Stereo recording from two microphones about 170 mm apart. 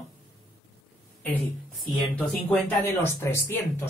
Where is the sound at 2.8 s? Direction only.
15° left (ahead or behind).